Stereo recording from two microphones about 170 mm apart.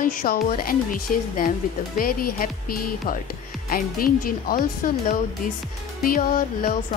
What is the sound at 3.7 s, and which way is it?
Speech, 60° left (ahead or behind).